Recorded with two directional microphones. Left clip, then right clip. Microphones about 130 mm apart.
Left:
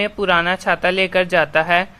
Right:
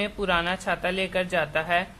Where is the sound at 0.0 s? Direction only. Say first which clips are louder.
Left 8 dB; 55° left (ahead or behind).